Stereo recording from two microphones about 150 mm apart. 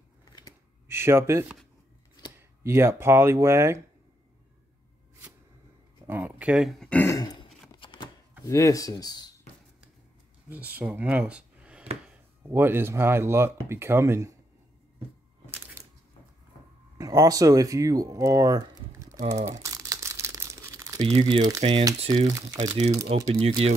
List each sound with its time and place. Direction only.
0.8 s speech: 15° right (ahead or behind)
2.6 s speech: 15° right (ahead or behind)
6.0 s speech: 10° right (ahead or behind); by 7.1 s 5° left (ahead or behind)
7.1 s a sound: 25° left (ahead or behind)
8.5 s speech: 20° left (ahead or behind)
10.5 s speech: 10° right (ahead or behind)
15.6 s a sound: 15° right (ahead or behind)
17.0 s speech: 25° right (ahead or behind)
19.4 s crumpling: 20° right (ahead or behind)
21.3 s speech: 25° right (ahead or behind)
21.5 s speech: 40° right (ahead or behind)
22.1 s speech: 25° right (ahead or behind)
23.1 s speech: 40° right (ahead or behind)